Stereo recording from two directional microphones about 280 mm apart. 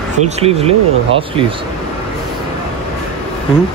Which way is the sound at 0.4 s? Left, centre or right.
Right.